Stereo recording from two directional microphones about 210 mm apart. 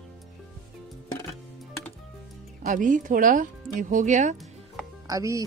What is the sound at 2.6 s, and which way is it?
Speech, 40° right (ahead or behind).